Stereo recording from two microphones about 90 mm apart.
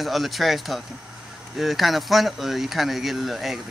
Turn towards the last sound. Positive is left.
turn(degrees=0)  # may be behind; listen again after turning